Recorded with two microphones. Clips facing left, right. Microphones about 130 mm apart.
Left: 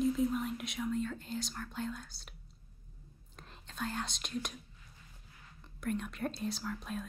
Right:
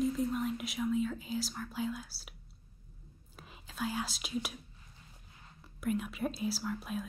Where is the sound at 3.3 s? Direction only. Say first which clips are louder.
Right 2 dB; 5° right (ahead or behind).